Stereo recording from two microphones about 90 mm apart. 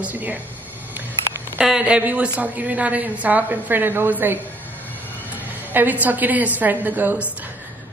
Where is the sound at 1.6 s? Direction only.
10° right (ahead or behind).